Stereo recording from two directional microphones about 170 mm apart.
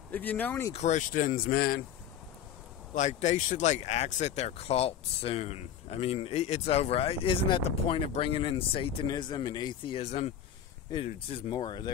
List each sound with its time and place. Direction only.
0.1 s speech: 10° left (ahead or behind)
0.7 s speech: 45° left (ahead or behind); by 1.8 s 65° left (ahead or behind)
2.9 s speech: 45° left (ahead or behind); by 11.9 s 25° left (ahead or behind)